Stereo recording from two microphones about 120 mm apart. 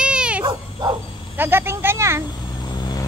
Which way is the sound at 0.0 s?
10° right (ahead or behind).